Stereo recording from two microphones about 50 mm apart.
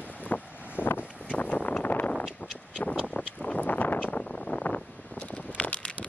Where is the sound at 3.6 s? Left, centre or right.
Left.